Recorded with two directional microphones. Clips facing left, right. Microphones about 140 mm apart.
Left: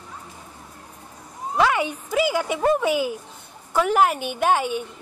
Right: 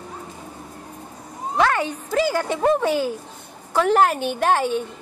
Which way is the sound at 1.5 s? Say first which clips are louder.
Even; 10° left (ahead or behind).